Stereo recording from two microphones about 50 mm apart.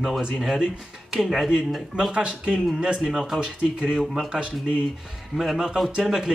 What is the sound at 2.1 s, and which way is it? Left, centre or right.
Speech, centre.